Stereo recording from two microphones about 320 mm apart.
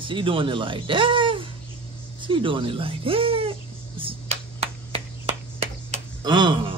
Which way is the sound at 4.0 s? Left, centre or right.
Centre.